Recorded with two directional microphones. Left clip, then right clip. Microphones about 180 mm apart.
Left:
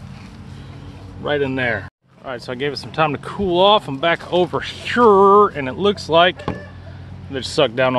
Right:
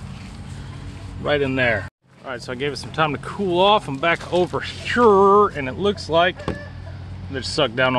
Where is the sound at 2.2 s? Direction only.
15° left (ahead or behind).